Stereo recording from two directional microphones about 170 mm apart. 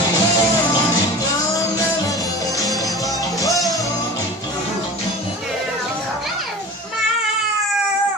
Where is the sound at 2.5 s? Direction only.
Centre (ahead or behind).